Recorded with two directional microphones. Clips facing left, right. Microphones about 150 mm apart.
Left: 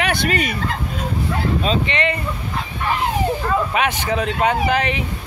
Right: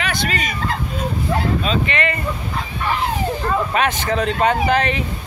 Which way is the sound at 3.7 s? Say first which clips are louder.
Right 1 dB; 10° left (ahead or behind).